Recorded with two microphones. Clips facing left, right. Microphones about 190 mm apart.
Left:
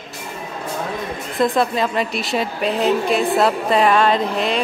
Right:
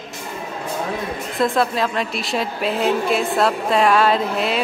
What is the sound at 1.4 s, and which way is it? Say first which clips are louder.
Speech: left 1 dB; centre (ahead or behind).